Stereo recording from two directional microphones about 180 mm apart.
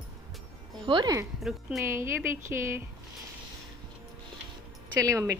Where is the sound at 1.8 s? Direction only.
15° right (ahead or behind).